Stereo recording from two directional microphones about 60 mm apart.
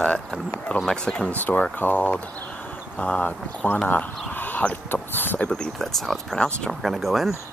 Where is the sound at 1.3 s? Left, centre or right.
Left.